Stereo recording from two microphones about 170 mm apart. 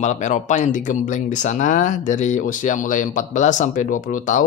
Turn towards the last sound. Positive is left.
turn(degrees=50)  # may be behind; listen again after turning